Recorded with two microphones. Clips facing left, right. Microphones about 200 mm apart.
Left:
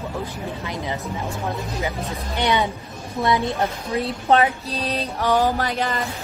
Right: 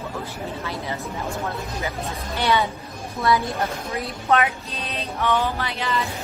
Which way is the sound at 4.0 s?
30° left (ahead or behind).